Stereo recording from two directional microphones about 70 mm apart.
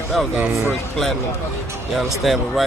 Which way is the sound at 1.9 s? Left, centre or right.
Centre.